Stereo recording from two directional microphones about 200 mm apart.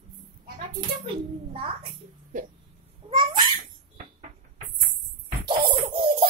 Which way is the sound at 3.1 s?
25° right (ahead or behind).